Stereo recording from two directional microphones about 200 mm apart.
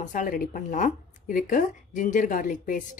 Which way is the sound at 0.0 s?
40° left (ahead or behind).